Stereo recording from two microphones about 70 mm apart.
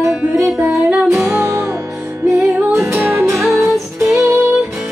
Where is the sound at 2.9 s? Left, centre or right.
Right.